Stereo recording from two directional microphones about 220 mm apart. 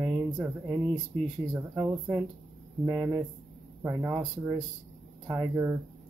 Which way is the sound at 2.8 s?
20° right (ahead or behind).